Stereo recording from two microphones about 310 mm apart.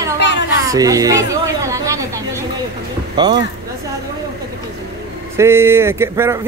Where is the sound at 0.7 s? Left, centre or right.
Centre.